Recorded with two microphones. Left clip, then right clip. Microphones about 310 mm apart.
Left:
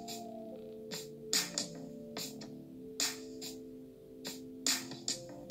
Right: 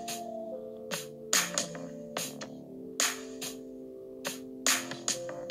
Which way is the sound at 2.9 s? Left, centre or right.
Right.